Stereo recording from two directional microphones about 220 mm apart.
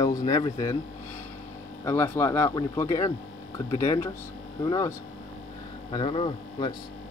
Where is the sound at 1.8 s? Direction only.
10° left (ahead or behind).